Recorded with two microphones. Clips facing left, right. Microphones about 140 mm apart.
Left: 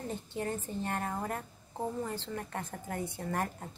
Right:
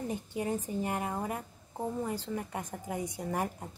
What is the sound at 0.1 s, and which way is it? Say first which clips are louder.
A woman's voice: right 1 dB; 10° right (ahead or behind).